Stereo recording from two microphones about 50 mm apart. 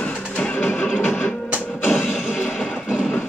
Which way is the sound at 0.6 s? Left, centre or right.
Left.